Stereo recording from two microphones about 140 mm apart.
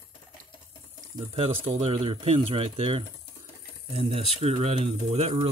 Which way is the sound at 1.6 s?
45° right (ahead or behind).